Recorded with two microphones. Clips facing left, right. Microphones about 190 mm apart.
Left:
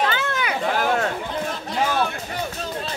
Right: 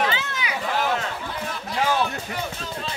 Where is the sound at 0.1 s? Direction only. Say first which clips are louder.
Left 4 dB; 55° left (ahead or behind).